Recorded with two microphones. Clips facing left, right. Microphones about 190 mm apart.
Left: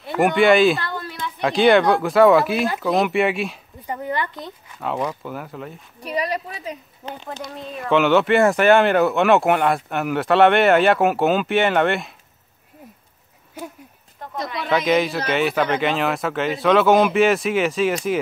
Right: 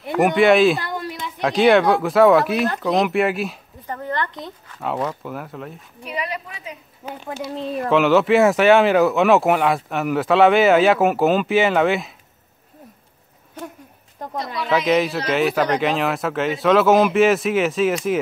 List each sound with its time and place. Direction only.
0.2 s speech: centre (ahead or behind)
0.7 s a sound: 15° right (ahead or behind)
1.4 s speech: centre (ahead or behind)
3.8 s a sound: 10° left (ahead or behind)
4.7 s speech: centre (ahead or behind)
5.9 s a woman's voice: 40° left (ahead or behind)
7.1 s speech: 10° right (ahead or behind)
14.7 s speech: centre (ahead or behind)